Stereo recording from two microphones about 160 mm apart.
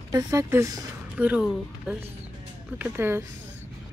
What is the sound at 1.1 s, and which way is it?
Speech, 5° right (ahead or behind).